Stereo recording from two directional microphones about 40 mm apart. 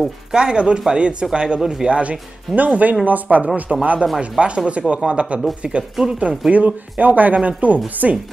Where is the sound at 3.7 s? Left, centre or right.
Centre.